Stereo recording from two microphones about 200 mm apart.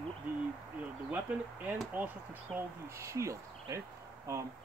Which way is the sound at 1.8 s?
10° right (ahead or behind).